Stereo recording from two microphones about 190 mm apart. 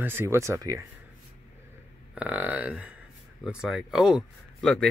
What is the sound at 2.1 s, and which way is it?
Speech, 10° right (ahead or behind).